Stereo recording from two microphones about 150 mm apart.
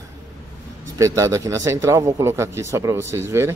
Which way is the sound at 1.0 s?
20° right (ahead or behind).